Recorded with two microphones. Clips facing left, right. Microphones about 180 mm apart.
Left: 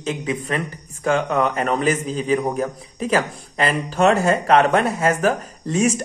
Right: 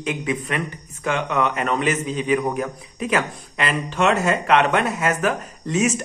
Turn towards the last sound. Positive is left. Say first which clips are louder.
# left 2 dB
turn(degrees=35)  # may be behind; listen again after turning